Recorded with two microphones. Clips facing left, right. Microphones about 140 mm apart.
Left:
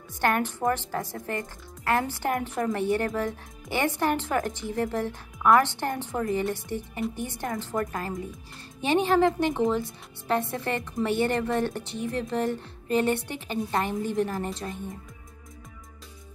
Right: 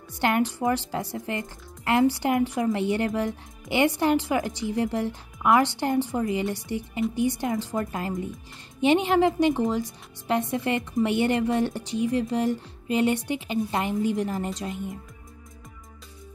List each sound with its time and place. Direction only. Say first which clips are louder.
0.2 s a woman's voice: right 2 dB; 15° right (ahead or behind)